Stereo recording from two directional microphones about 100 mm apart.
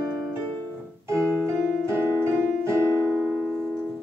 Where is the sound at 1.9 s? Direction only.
25° right (ahead or behind).